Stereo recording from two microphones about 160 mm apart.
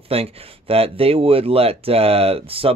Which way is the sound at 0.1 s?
40° right (ahead or behind).